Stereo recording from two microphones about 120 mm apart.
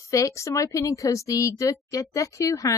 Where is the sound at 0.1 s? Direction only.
25° left (ahead or behind).